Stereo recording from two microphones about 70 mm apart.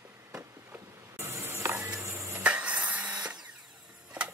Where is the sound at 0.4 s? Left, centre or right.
Right.